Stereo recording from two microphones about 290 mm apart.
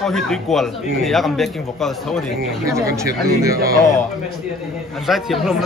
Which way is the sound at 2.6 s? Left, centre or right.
Centre.